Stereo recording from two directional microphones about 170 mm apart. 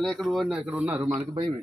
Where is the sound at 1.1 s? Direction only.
30° right (ahead or behind).